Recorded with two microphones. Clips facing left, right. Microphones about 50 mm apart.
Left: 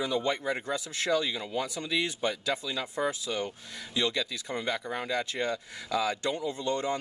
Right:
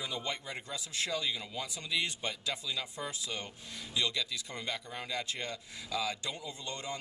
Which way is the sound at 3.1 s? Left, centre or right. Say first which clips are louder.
Left 8 dB; left.